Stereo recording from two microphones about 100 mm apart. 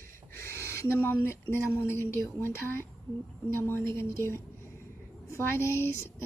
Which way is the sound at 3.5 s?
25° left (ahead or behind).